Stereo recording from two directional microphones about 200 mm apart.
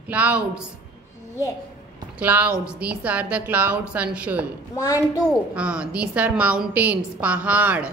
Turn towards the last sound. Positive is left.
turn(degrees=-5)  # may be behind; listen again after turning